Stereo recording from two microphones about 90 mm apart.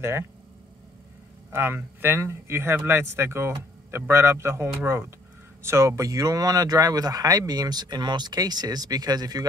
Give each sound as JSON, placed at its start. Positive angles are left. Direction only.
{"t": 1.5, "sound": "speech", "side_deg": -25}